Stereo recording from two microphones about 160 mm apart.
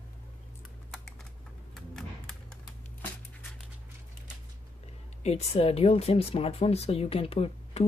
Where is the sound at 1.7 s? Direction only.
Centre (ahead or behind).